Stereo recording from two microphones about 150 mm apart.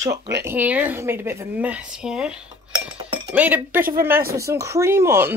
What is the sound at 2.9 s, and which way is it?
Chink, 35° right (ahead or behind).